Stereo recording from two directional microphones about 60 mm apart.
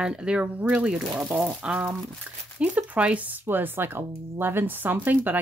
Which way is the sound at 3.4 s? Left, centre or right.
Right.